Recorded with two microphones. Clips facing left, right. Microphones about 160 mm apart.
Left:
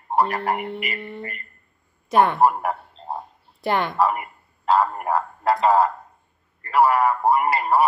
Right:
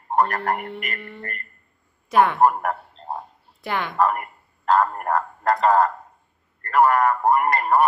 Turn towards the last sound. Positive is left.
turn(degrees=5)  # may be behind; listen again after turning